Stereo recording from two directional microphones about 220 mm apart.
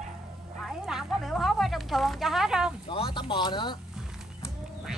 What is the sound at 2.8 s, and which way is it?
Speech, 25° left (ahead or behind).